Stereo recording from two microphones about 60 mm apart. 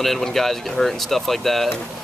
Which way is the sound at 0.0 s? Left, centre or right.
Centre.